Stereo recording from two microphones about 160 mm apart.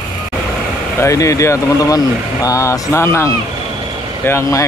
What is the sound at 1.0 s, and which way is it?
Speech, 20° left (ahead or behind).